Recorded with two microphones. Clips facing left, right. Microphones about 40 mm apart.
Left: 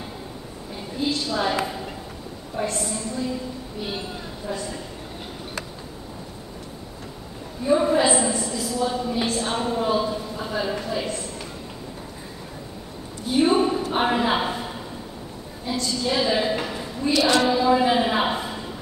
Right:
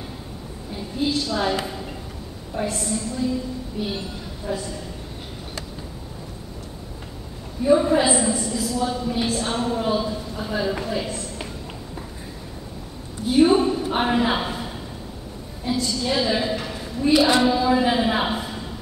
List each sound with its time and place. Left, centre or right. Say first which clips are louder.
1.0 s a woman's voice: right 1 dB; centre
3.8 s a woman's voice: right 1 dB; centre
7.6 s a woman's voice: right 2 dB; centre
10.7 s a woman's voice: right 1 dB; centre
13.3 s a sound: right 3 dB; centre
14.0 s a man's voice: even; centre
17.0 s a woman's voice: right 2 dB; centre
17.5 s a woman's voice: even; centre